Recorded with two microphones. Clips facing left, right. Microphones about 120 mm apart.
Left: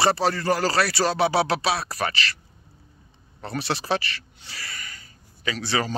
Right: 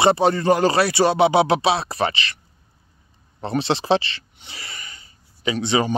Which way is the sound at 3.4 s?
25° right (ahead or behind).